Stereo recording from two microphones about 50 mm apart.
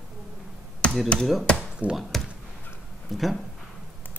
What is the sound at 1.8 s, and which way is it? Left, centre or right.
Speech, right.